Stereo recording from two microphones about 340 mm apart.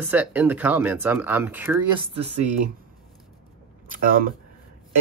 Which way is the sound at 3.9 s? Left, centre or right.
Right.